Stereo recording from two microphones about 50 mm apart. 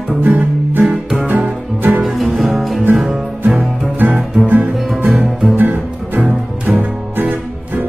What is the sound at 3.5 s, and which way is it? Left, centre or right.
Music, right.